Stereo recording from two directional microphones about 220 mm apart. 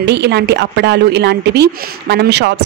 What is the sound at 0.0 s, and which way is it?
Speech, 50° right (ahead or behind).